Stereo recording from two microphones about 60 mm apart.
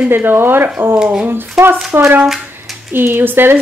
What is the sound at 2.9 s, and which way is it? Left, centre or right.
Speech, right.